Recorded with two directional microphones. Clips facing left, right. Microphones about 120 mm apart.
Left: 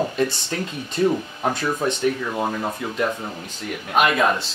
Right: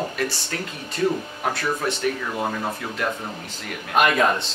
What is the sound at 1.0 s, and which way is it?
Speech, 20° left (ahead or behind).